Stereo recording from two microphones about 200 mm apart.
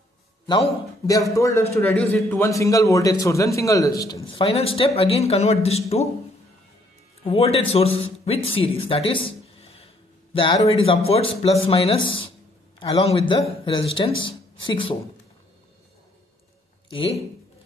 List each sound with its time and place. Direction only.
0.5 s a man's voice: 20° left (ahead or behind)
4.4 s speech: 30° left (ahead or behind)
7.2 s speech: 30° left (ahead or behind)